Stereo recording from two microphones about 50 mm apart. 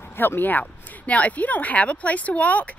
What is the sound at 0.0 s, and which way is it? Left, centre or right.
Speech, left.